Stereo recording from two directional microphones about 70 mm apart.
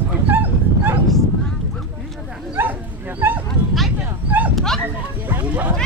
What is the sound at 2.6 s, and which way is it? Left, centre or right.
Bow-wow, right.